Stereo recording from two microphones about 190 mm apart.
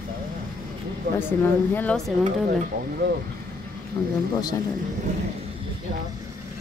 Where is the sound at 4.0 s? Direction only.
20° left (ahead or behind).